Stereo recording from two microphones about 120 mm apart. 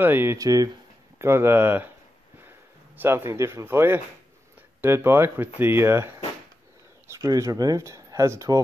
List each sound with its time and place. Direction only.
0.0 s speech: 15° right (ahead or behind)
0.4 s speech: 30° right (ahead or behind)
3.0 s speech: 20° right (ahead or behind)
7.1 s speech: 25° right (ahead or behind)